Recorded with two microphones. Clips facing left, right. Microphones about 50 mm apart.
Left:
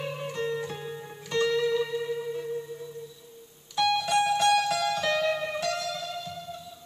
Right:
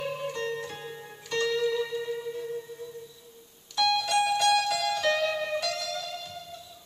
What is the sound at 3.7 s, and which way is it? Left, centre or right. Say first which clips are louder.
Music: left 1 dB; centre.